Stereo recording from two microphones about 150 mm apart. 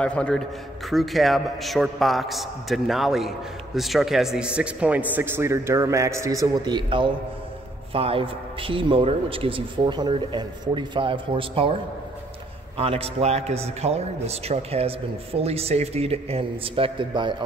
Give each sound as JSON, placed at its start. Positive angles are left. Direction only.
{"t": 0.0, "sound": "a man's voice", "side_deg": 5}
{"t": 12.7, "sound": "a man's voice", "side_deg": -40}